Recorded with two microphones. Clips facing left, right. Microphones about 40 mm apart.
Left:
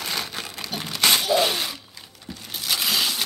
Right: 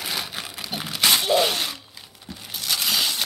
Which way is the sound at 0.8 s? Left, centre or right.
Centre.